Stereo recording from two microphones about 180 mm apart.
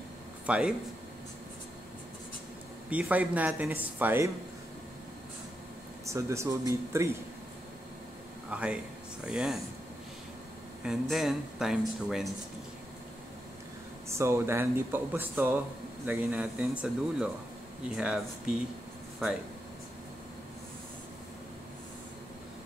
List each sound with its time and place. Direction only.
0.5 s speech: 5° right (ahead or behind)
2.9 s speech: 10° right (ahead or behind)
6.0 s speech: 15° right (ahead or behind)
8.5 s a man's voice: 5° right (ahead or behind)
10.8 s speech: 5° right (ahead or behind)
14.0 s speech: 15° right (ahead or behind)